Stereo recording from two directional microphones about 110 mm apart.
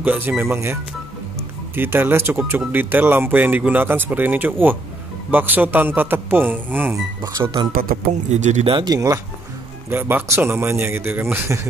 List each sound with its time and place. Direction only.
0.0 s a man's voice: 15° right (ahead or behind)
1.8 s a man's voice: 20° right (ahead or behind)
8.3 s speech: 90° right
8.6 s speech: 45° right (ahead or behind)
9.8 s a man's voice: 20° right (ahead or behind)